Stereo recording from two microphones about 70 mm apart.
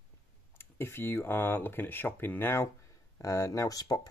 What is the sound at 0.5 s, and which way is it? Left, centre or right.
Speech, left.